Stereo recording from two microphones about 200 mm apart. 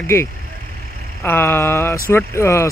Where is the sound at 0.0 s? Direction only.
15° left (ahead or behind).